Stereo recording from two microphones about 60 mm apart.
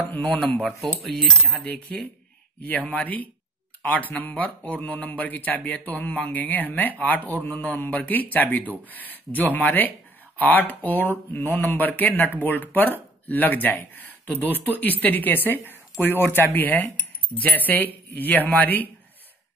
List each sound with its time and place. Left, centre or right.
0.6 s cutlery: centre
1.6 s speech: left
14.4 s speech: right
14.8 s speech: left